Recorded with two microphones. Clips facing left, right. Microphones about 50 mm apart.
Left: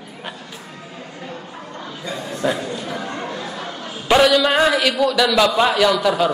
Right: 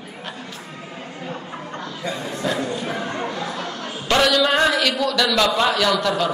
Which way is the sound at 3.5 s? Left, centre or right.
Centre.